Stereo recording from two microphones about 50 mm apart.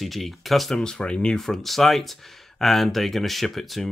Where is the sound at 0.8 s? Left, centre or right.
Centre.